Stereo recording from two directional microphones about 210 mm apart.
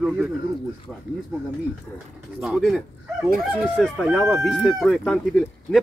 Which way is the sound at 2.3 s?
Centre (ahead or behind).